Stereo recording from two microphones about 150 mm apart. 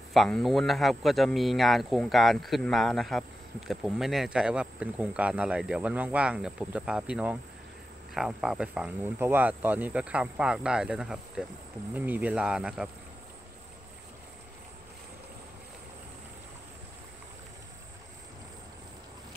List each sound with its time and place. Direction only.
0.1 s speech: centre (ahead or behind)